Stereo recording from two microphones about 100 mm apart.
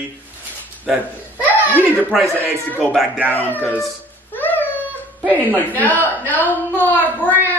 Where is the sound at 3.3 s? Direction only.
20° left (ahead or behind).